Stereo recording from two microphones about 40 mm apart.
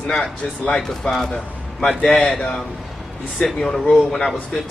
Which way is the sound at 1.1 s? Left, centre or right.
Centre.